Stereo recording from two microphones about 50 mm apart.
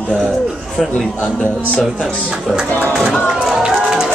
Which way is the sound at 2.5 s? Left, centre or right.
Centre.